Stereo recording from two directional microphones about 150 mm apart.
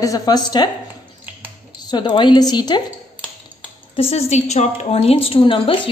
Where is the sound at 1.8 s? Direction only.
30° left (ahead or behind).